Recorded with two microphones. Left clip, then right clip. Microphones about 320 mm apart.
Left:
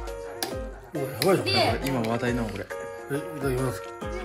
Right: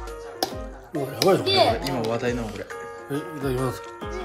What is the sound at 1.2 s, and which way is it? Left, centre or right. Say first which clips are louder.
Speech: right 4 dB; right.